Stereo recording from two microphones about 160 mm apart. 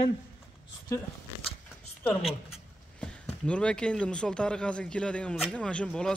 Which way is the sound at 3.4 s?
5° left (ahead or behind).